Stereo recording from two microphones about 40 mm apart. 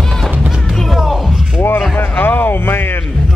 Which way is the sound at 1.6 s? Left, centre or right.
Left.